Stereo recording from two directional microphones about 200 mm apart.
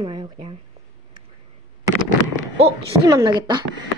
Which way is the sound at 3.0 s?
20° right (ahead or behind).